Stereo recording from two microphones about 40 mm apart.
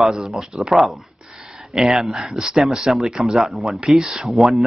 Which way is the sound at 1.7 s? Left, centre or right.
Centre.